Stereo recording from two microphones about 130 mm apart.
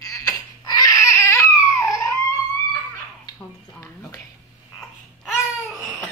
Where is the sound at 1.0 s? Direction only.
20° left (ahead or behind).